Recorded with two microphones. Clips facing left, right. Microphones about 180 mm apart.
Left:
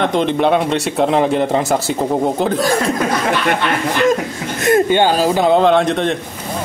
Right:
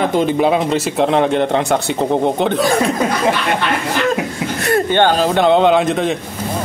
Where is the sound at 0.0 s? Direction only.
5° right (ahead or behind).